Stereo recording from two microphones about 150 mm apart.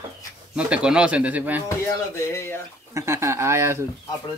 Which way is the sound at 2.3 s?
15° left (ahead or behind).